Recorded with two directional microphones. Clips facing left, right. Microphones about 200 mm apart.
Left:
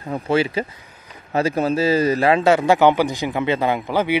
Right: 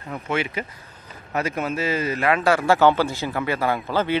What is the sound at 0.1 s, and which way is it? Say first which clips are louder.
A man's voice: left 6 dB; 30° left (ahead or behind).